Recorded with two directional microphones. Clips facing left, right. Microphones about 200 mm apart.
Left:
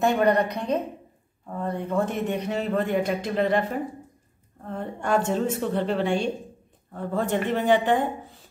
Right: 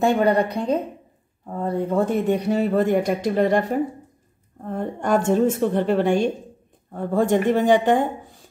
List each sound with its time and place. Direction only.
0.0 s speech: 30° right (ahead or behind)
4.6 s a woman's voice: 45° right (ahead or behind)